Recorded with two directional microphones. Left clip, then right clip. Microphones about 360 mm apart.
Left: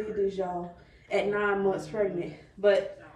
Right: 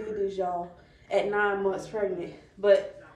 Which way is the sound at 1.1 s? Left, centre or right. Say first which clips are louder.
Right 1 dB; centre.